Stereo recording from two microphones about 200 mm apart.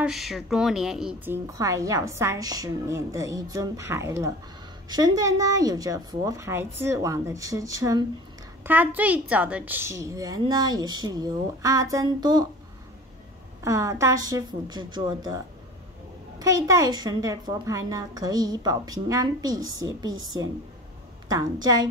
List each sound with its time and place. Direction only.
0.0 s a woman's voice: centre (ahead or behind); by 12.4 s 20° right (ahead or behind)
13.6 s a woman's voice: 15° right (ahead or behind)
21.3 s a woman's voice: 20° right (ahead or behind)